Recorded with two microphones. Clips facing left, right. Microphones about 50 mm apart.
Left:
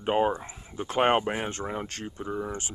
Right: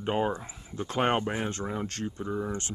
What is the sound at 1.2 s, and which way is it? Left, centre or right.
Speech, centre.